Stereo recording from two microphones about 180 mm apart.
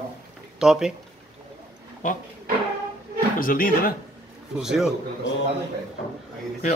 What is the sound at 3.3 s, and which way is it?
Speech, 50° left (ahead or behind).